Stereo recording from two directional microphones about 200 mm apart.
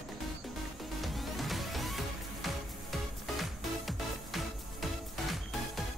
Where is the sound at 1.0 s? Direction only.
Centre (ahead or behind).